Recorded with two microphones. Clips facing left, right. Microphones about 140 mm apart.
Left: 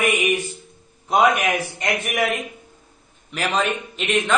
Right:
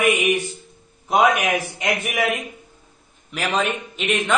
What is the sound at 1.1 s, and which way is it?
A man's voice, 5° right (ahead or behind).